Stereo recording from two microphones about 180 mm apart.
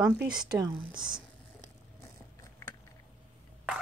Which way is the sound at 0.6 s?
20° right (ahead or behind).